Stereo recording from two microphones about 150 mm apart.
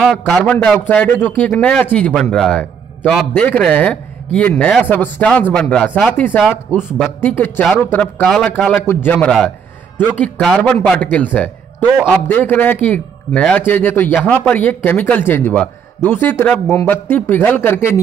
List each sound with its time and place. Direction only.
0.0 s a man's voice: 5° left (ahead or behind)
6.7 s speech: centre (ahead or behind)
7.1 s a man's voice: 15° left (ahead or behind)
12.3 s a man's voice: 15° left (ahead or behind)